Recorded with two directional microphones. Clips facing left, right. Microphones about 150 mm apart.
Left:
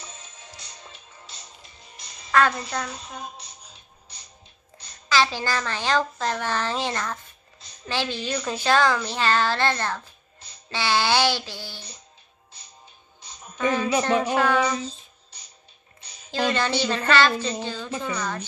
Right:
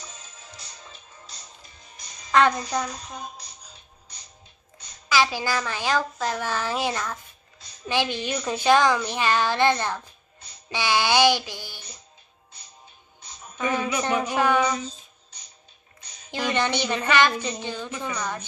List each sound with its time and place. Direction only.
2.3 s a child's voice: 20° right (ahead or behind)
5.1 s a woman's voice: 10° right (ahead or behind)
13.6 s music: 15° right (ahead or behind)
14.3 s a woman's voice: 15° right (ahead or behind)
16.3 s a woman's voice: 15° right (ahead or behind)